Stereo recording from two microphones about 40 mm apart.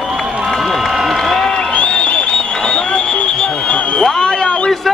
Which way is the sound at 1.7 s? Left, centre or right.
Left.